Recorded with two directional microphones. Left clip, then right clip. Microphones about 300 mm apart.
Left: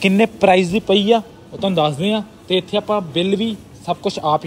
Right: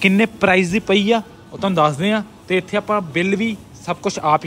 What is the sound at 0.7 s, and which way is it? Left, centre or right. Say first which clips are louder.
Speech: left 1 dB; right.